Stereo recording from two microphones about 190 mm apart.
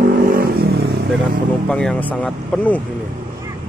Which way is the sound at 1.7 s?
5° left (ahead or behind).